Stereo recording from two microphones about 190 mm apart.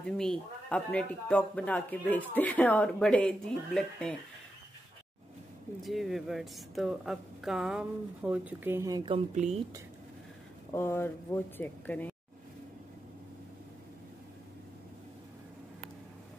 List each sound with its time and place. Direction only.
0.0 s a man's voice: 5° left (ahead or behind)
5.8 s speech: centre (ahead or behind); by 9.2 s 25° right (ahead or behind)
9.3 s speech: 35° right (ahead or behind)
10.7 s a man's voice: 15° left (ahead or behind)